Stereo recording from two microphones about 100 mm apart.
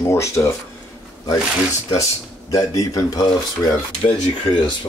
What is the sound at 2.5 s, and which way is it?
Speech, 35° left (ahead or behind).